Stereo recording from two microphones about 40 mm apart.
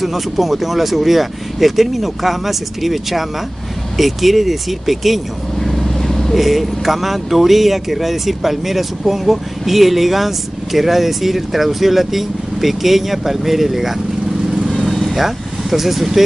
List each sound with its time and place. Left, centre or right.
0.0 s speech: centre
5.6 s vehicle: centre
6.3 s speech: centre
14.7 s vehicle: centre
15.2 s speech: centre